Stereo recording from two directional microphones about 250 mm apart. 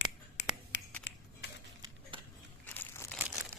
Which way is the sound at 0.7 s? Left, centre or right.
Left.